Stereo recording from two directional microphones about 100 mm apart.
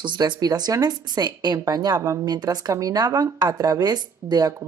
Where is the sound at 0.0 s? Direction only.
50° right (ahead or behind).